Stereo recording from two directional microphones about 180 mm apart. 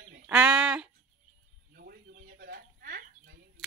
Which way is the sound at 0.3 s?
5° right (ahead or behind).